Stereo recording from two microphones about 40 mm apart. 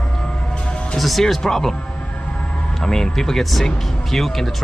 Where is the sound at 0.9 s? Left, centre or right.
Centre.